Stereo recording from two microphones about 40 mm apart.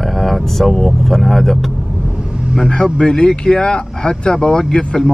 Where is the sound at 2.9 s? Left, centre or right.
Centre.